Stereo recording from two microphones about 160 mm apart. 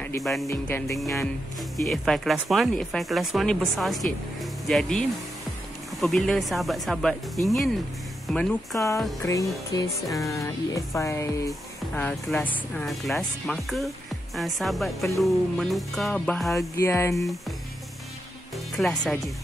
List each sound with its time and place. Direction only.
0.2 s speech: centre (ahead or behind)
0.5 s music: 15° left (ahead or behind)
1.9 s speech: centre (ahead or behind)
8.7 s speech: 20° left (ahead or behind); by 16.5 s 5° left (ahead or behind)
16.5 s music: 15° left (ahead or behind)
18.8 s speech: centre (ahead or behind)